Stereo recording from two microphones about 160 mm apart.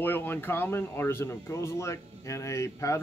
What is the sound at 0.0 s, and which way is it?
Speech, 10° left (ahead or behind).